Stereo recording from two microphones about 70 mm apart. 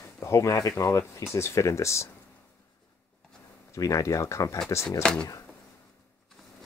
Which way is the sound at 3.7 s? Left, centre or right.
Left.